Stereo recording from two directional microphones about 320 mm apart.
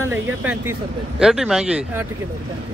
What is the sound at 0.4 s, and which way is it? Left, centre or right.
Speech, centre.